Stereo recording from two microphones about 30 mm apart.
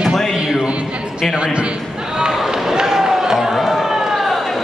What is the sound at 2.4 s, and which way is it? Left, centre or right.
Run, centre.